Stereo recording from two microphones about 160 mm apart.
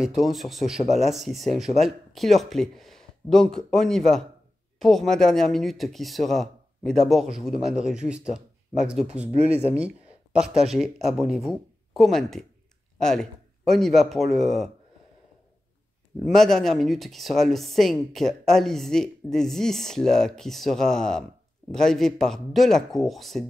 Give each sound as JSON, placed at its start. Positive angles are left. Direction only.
{"t": 0.0, "sound": "speech", "side_deg": 0}
{"t": 9.3, "sound": "speech", "side_deg": -40}
{"t": 9.7, "sound": "a man's voice", "side_deg": -10}
{"t": 16.3, "sound": "speech", "side_deg": 5}